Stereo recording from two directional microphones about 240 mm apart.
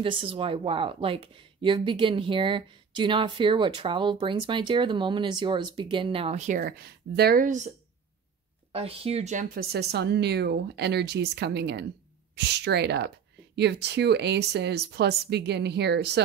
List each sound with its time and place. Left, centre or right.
0.0 s speech: right
8.7 s speech: right